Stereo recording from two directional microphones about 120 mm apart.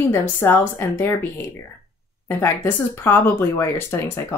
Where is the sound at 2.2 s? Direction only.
20° left (ahead or behind).